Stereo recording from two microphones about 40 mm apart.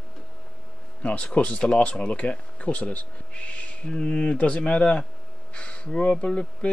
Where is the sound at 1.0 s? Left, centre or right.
Left.